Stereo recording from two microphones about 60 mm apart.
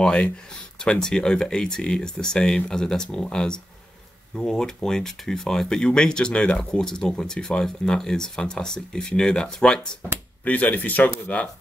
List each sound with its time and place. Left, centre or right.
0.0 s speech: centre
10.4 s speech: left